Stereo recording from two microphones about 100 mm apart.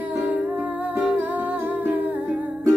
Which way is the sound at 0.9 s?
15° right (ahead or behind).